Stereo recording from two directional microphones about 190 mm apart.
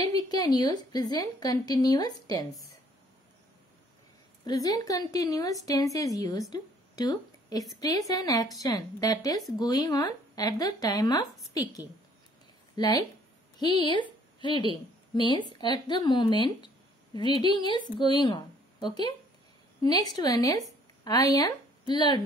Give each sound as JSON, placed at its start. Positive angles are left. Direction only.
{"t": 0.0, "sound": "a woman's voice", "side_deg": 20}
{"t": 4.5, "sound": "a woman's voice", "side_deg": 20}
{"t": 19.8, "sound": "speech", "side_deg": 20}